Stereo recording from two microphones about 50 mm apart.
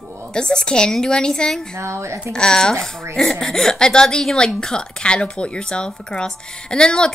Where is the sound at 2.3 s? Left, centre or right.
Centre.